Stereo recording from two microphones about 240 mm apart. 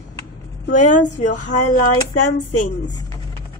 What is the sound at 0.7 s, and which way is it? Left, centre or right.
Speech, left.